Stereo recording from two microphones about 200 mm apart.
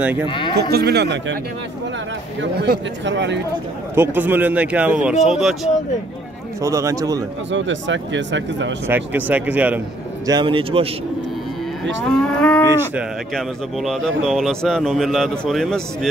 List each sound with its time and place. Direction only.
0.3 s livestock: 25° left (ahead or behind)
0.6 s speech: 50° right (ahead or behind)
2.4 s speech: 60° right (ahead or behind)
3.9 s a man's voice: 10° right (ahead or behind)
6.6 s speech: 15° right (ahead or behind)
7.5 s speech: 65° right (ahead or behind)
8.8 s speech: 10° right (ahead or behind)
10.2 s speech: 20° right (ahead or behind)
12.0 s a man's voice: 5° left (ahead or behind)